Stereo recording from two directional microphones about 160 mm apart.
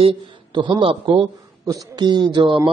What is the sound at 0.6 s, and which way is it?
Speech, 30° right (ahead or behind).